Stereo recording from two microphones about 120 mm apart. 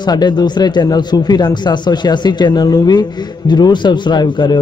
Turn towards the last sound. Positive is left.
turn(degrees=40)  # may be behind; listen again after turning